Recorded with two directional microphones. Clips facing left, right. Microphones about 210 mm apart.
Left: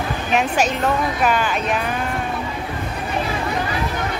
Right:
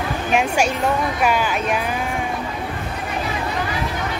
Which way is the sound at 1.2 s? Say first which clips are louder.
Even; 10° right (ahead or behind).